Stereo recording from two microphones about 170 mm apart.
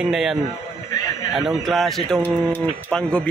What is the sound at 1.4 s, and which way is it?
Speech, centre (ahead or behind).